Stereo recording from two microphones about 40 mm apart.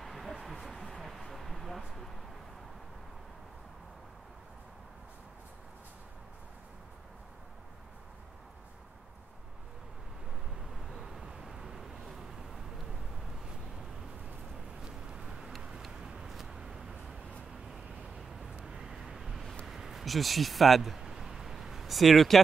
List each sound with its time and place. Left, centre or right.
0.0 s a sound: centre
10.6 s vehicle: centre
14.9 s vehicle: right
16.3 s vehicle: centre
18.4 s vehicle: right
19.6 s a sound: centre